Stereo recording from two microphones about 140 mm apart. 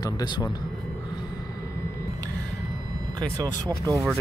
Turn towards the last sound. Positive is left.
turn(degrees=-25)  # may be behind; listen again after turning